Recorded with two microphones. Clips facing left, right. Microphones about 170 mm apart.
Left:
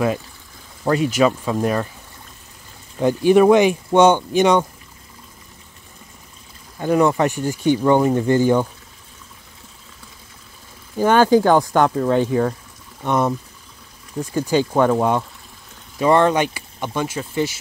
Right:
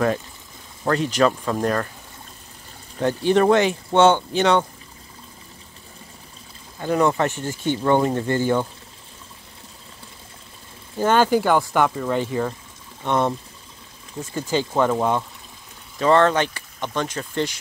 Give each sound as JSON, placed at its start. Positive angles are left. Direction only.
{"t": 0.8, "sound": "speech", "side_deg": 10}
{"t": 3.0, "sound": "speech", "side_deg": 15}
{"t": 6.8, "sound": "speech", "side_deg": 15}
{"t": 11.0, "sound": "speech", "side_deg": 15}
{"t": 13.0, "sound": "speech", "side_deg": 5}
{"t": 14.3, "sound": "speech", "side_deg": 15}